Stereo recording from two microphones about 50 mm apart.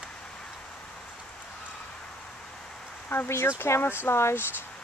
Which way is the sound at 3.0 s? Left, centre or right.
Left.